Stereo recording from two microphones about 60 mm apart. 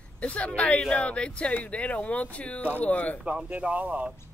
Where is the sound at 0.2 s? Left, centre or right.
Left.